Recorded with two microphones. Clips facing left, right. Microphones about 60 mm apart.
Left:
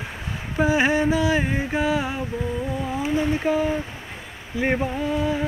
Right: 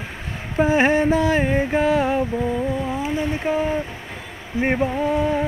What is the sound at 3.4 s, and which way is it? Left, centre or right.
Speech, right.